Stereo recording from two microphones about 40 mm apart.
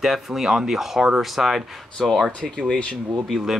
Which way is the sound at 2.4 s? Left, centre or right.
Centre.